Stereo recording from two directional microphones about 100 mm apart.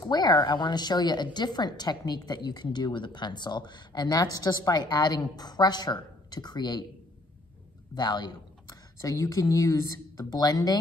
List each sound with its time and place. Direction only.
0.0 s a woman's voice: 45° left (ahead or behind)
7.9 s a woman's voice: 45° left (ahead or behind)